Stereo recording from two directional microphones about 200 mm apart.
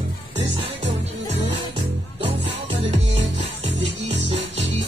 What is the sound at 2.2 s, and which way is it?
Music, 30° right (ahead or behind).